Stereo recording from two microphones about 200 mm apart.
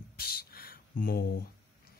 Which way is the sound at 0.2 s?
50° left (ahead or behind).